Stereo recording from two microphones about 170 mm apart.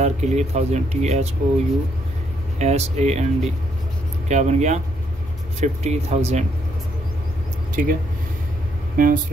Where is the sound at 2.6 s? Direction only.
40° right (ahead or behind).